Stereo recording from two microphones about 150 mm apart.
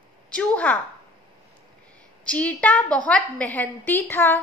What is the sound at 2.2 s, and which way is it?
A woman's voice, 10° left (ahead or behind).